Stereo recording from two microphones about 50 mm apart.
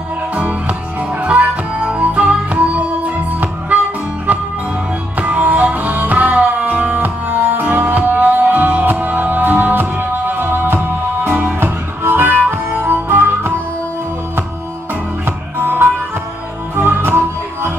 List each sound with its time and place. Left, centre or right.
0.3 s music: right
15.2 s music: right